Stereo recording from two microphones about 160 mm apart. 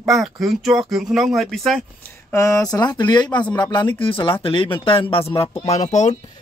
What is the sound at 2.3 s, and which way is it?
Speech, 20° left (ahead or behind).